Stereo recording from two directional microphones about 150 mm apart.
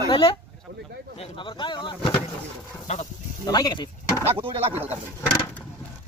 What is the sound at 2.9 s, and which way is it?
Speech, 50° left (ahead or behind).